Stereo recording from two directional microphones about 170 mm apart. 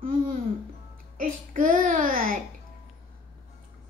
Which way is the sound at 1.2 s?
55° right (ahead or behind).